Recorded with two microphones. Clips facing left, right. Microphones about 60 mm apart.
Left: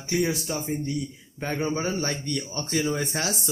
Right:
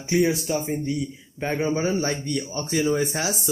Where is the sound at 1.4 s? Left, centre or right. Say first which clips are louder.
Right 3 dB; centre.